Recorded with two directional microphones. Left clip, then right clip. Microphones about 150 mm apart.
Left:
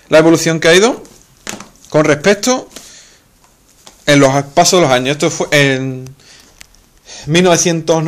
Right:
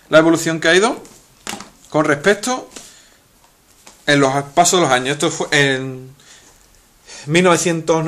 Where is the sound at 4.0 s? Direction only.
45° left (ahead or behind).